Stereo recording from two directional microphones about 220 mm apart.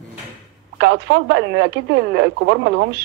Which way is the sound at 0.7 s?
50° right (ahead or behind).